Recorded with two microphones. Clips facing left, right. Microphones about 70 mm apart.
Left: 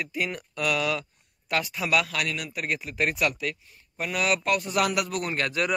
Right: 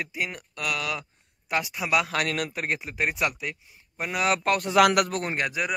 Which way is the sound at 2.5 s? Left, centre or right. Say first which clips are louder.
Right 1 dB; right.